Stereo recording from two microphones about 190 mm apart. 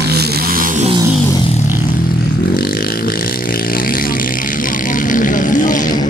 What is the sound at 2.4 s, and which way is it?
Vehicle, 50° left (ahead or behind).